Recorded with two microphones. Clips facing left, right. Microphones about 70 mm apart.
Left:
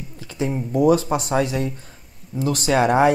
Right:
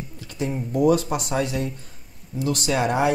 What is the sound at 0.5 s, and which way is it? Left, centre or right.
Speech, centre.